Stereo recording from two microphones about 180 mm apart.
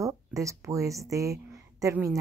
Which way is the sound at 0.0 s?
15° right (ahead or behind).